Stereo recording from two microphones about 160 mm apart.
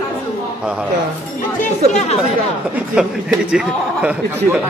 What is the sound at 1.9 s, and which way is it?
Speech, 45° left (ahead or behind).